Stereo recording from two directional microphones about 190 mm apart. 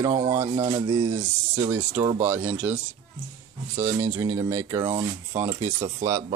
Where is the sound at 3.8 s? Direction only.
15° right (ahead or behind).